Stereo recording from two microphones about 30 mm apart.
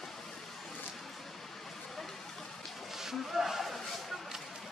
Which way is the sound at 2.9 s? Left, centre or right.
Centre.